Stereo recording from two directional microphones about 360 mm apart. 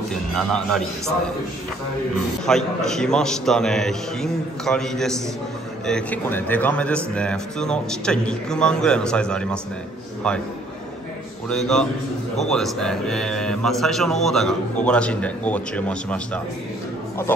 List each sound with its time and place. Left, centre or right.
0.1 s speech: centre
2.4 s speech: centre
11.4 s speech: centre